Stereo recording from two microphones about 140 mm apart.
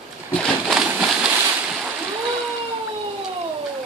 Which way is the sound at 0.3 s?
5° left (ahead or behind).